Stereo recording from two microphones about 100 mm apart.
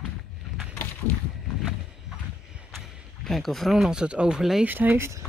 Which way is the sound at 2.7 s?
Centre (ahead or behind).